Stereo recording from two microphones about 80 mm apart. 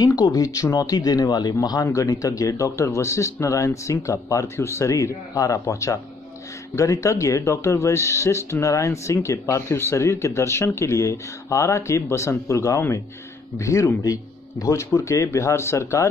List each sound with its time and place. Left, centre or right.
0.0 s speech: left
1.9 s speech: left